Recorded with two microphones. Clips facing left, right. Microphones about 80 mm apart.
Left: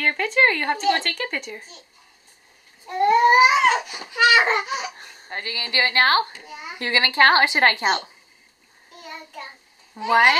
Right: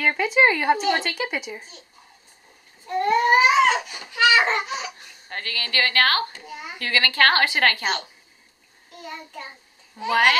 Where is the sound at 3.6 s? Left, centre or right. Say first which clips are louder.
Even; centre.